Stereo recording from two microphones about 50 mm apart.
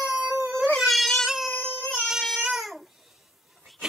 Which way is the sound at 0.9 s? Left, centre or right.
Centre.